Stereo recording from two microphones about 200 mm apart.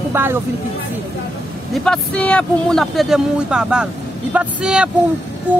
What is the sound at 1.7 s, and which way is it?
Speech, 5° left (ahead or behind).